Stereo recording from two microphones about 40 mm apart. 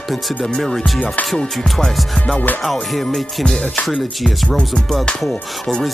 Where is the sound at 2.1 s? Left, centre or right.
Left.